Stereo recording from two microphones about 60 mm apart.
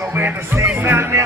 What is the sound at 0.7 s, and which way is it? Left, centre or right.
Speech, right.